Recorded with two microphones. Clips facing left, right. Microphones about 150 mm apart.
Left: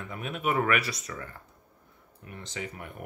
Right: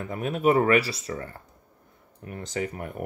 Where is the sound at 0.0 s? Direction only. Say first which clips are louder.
Right 8 dB; 40° right (ahead or behind).